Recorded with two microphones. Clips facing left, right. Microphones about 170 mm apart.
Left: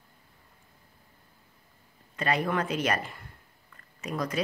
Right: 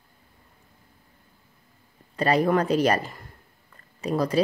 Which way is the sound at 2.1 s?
35° right (ahead or behind).